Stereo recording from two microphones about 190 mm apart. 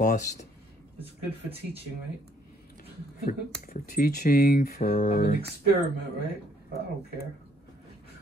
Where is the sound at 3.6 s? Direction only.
50° left (ahead or behind).